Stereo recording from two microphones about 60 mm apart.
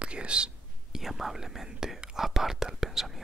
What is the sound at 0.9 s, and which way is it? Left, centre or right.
Speech, centre.